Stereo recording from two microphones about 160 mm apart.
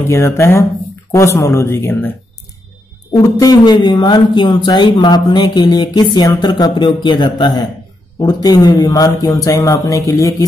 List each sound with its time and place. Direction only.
0.1 s speech: 15° left (ahead or behind)